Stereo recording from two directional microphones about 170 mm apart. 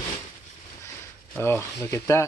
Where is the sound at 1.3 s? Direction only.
15° left (ahead or behind).